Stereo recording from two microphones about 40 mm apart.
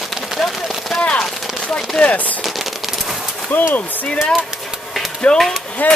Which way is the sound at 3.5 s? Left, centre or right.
Left.